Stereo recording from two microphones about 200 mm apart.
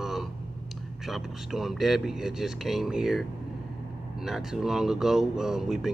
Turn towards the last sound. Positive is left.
turn(degrees=0)  # may be behind; listen again after turning